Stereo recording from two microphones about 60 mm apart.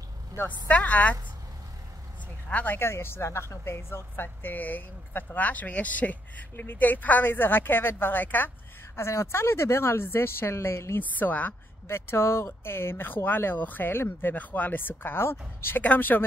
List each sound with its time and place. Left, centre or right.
0.5 s speech: left
2.5 s speech: left
2.8 s a woman's voice: left
8.9 s speech: left
11.0 s speech: left
11.9 s a woman's voice: left
15.8 s a woman's voice: left